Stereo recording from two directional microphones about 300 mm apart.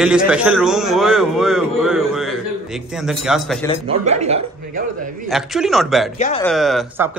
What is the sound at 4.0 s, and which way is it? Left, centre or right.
Speech, right.